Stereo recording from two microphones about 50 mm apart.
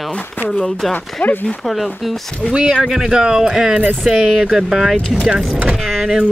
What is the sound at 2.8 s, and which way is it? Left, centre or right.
Speech, centre.